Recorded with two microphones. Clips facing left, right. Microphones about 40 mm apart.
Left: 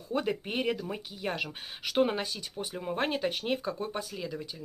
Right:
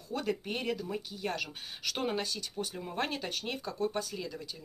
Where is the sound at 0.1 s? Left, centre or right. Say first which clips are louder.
Left 3 dB; centre.